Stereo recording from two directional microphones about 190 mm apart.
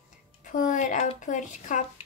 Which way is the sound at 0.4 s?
45° left (ahead or behind).